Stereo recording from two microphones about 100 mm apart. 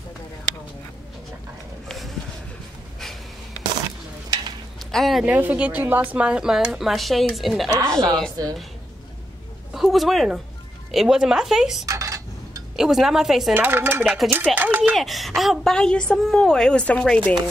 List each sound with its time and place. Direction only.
1.9 s a sound: centre (ahead or behind)
4.9 s speech: centre (ahead or behind)
5.2 s speech: 15° right (ahead or behind); by 8.3 s 5° left (ahead or behind)
9.8 s speech: centre (ahead or behind)
11.8 s a sound: 35° right (ahead or behind)
12.7 s speech: 5° right (ahead or behind)
13.5 s dishes: 20° right (ahead or behind)
14.0 s speech: centre (ahead or behind)
14.5 s dishes: 20° right (ahead or behind)
14.8 s a woman's voice: centre (ahead or behind)